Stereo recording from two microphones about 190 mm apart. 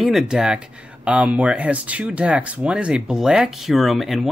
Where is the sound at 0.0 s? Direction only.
Centre (ahead or behind).